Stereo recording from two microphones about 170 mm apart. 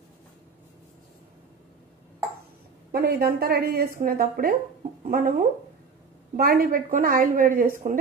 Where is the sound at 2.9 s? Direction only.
65° right (ahead or behind).